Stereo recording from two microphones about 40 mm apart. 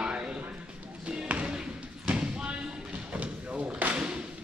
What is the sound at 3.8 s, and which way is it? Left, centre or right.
Thump, right.